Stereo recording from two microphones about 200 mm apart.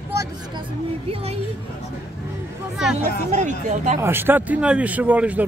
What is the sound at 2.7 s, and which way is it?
Speech, centre (ahead or behind).